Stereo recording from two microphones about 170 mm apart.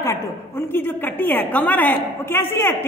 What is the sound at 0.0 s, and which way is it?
A woman's voice, 15° left (ahead or behind).